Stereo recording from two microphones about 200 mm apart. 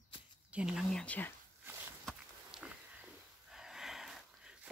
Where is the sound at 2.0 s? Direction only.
5° right (ahead or behind).